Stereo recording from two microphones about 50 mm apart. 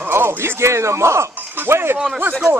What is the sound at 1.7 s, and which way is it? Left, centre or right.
Speech, right.